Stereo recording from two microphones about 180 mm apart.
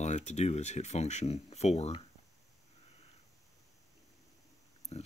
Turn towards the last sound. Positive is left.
turn(degrees=35)  # may be behind; listen again after turning